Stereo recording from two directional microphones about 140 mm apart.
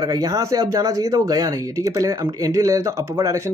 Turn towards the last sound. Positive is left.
turn(degrees=-20)  # may be behind; listen again after turning